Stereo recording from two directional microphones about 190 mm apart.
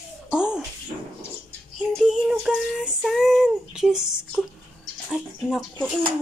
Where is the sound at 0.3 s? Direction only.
5° right (ahead or behind).